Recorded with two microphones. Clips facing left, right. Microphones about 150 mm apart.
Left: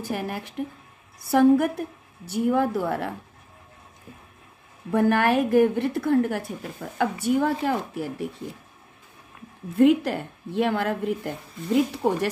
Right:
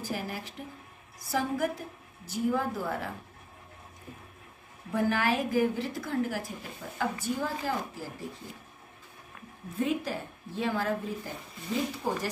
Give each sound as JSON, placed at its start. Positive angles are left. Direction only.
{"t": 0.0, "sound": "a woman's voice", "side_deg": 65}
{"t": 4.9, "sound": "a woman's voice", "side_deg": 60}
{"t": 9.8, "sound": "a woman's voice", "side_deg": 75}